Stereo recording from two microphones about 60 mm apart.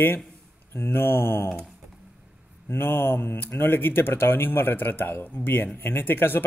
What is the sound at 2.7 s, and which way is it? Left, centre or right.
Speech, left.